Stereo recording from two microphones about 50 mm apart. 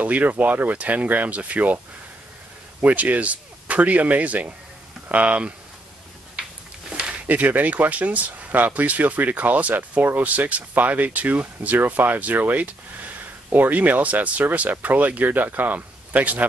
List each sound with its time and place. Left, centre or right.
0.0 s speech: right
2.8 s speech: right
6.9 s speech: right